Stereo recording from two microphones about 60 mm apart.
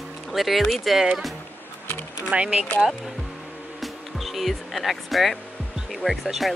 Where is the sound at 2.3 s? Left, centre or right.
Centre.